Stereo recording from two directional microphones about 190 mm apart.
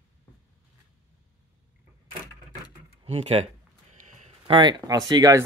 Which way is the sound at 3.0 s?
35° right (ahead or behind).